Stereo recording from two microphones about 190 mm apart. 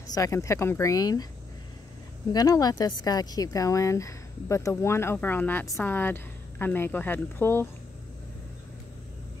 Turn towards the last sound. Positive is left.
turn(degrees=10)  # may be behind; listen again after turning